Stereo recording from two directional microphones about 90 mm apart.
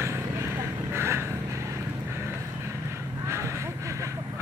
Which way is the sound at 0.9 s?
30° right (ahead or behind).